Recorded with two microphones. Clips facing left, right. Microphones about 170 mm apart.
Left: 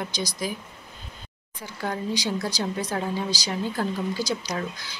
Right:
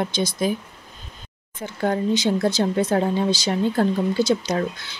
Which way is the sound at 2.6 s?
45° right (ahead or behind).